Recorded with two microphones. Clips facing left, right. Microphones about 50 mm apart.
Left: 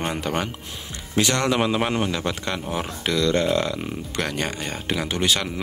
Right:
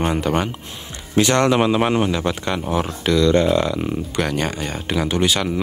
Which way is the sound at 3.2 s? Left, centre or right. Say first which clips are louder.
Right 5 dB; centre.